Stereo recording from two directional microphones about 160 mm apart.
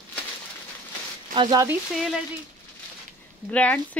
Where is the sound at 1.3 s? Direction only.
30° right (ahead or behind).